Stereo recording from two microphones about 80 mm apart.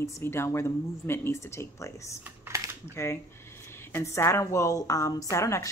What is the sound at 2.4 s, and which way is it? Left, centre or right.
Typing, right.